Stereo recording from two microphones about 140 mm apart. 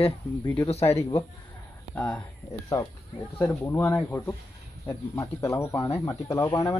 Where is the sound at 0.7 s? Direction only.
45° left (ahead or behind).